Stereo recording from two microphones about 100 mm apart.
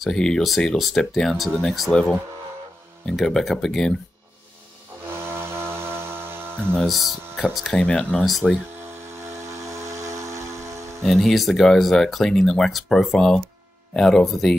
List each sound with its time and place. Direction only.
0.0 s speech: 5° left (ahead or behind)
5.0 s a sound: 25° right (ahead or behind)
6.9 s speech: centre (ahead or behind)
8.8 s steam whistle: 25° right (ahead or behind)
11.0 s speech: 5° left (ahead or behind)